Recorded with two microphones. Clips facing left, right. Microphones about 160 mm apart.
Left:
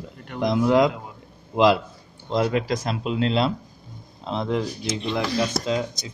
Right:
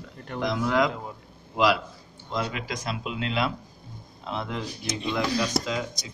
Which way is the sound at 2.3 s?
35° left (ahead or behind).